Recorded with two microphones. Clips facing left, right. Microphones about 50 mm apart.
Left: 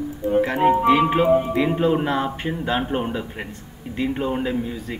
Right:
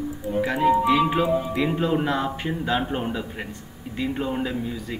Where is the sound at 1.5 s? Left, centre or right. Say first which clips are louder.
Left 3 dB; centre.